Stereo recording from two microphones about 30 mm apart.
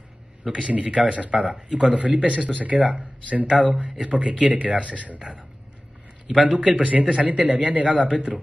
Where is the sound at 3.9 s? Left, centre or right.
Right.